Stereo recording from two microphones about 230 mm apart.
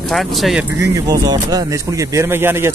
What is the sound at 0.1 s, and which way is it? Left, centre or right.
Speech, centre.